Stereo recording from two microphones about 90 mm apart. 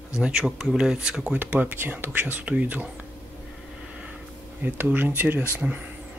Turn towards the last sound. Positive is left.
turn(degrees=-20)  # may be behind; listen again after turning